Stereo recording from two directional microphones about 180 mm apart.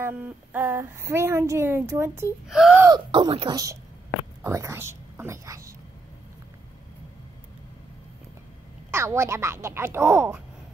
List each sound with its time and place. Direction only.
0.0 s speech: 10° right (ahead or behind)
2.4 s speech: centre (ahead or behind)
3.1 s speech: 30° right (ahead or behind)
8.9 s speech: 15° right (ahead or behind)